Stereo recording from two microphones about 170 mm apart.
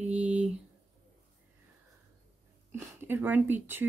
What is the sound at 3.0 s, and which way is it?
Speech, 10° right (ahead or behind).